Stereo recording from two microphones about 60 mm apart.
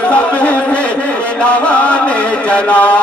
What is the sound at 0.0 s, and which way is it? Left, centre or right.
Music, left.